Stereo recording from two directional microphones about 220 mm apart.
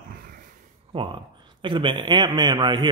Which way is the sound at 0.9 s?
25° right (ahead or behind).